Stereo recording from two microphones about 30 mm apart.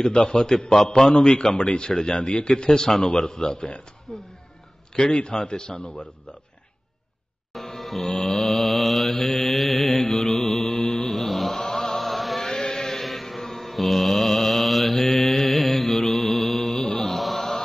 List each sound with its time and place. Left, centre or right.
0.2 s a man's voice: left
1.4 s a man's voice: left
5.3 s a man's voice: left
7.5 s mantra: centre
9.8 s mantra: centre
11.1 s chant: centre
12.4 s chant: centre
13.0 s mantra: centre